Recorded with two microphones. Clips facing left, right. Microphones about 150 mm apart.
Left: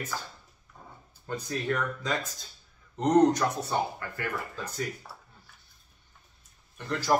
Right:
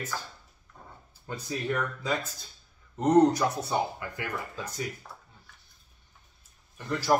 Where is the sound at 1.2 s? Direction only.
5° right (ahead or behind).